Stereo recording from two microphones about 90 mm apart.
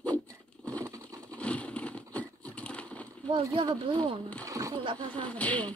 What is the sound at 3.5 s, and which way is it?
Speech, 65° right (ahead or behind).